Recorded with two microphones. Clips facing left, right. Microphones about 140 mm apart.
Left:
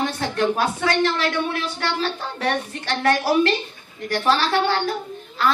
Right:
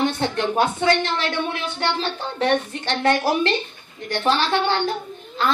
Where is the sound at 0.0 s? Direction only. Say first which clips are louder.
Even; 25° right (ahead or behind).